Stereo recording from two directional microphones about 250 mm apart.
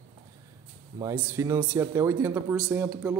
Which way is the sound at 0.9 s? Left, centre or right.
Centre.